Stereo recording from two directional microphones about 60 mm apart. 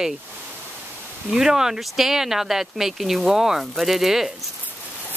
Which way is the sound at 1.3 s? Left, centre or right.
Centre.